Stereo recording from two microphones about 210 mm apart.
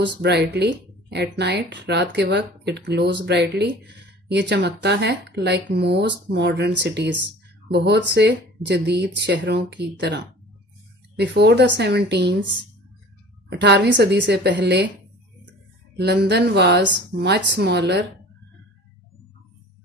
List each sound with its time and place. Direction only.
0.0 s speech: 55° right (ahead or behind)
13.5 s a woman's voice: 55° right (ahead or behind)
16.0 s speech: 50° right (ahead or behind)